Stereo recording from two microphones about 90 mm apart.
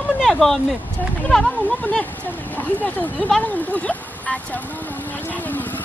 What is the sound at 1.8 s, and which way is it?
Speech, 20° left (ahead or behind).